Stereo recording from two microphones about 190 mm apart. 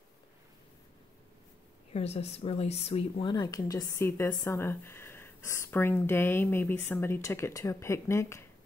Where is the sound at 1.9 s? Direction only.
35° left (ahead or behind).